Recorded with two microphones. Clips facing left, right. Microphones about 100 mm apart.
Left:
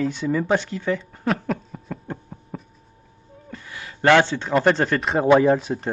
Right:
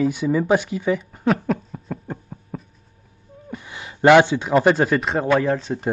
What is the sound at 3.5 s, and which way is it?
Speech, 20° right (ahead or behind).